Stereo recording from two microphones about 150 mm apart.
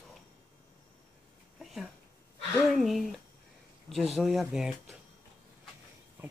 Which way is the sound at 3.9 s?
Centre (ahead or behind).